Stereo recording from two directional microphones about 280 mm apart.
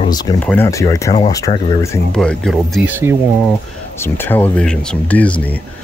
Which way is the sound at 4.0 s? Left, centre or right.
Centre.